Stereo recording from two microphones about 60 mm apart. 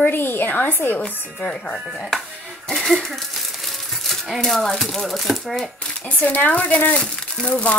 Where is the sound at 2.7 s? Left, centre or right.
Centre.